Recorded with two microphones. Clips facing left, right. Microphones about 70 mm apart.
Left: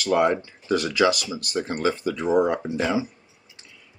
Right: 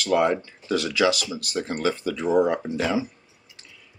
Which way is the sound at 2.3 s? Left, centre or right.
Centre.